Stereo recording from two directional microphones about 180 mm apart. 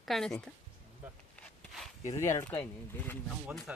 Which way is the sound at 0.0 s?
Centre (ahead or behind).